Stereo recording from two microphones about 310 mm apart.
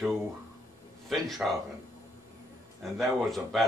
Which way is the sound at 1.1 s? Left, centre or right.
Centre.